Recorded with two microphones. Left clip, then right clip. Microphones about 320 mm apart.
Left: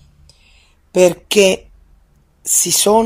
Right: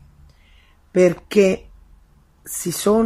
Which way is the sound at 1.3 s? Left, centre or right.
Left.